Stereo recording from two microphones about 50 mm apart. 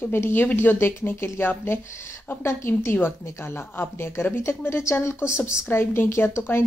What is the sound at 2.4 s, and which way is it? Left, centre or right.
Speech, left.